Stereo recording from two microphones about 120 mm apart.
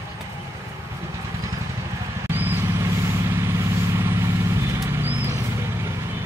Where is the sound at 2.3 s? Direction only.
20° right (ahead or behind).